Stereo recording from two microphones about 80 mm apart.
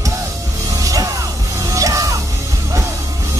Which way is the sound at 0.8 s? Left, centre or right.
Right.